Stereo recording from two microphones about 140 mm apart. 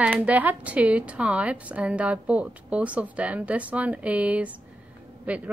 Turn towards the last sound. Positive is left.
turn(degrees=-10)  # may be behind; listen again after turning